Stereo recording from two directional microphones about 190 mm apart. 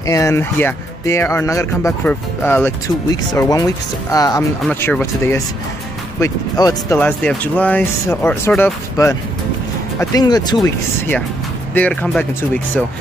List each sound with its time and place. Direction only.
0.0 s speech: 15° left (ahead or behind)
7.0 s speech: 5° left (ahead or behind)
11.7 s speech: 10° left (ahead or behind)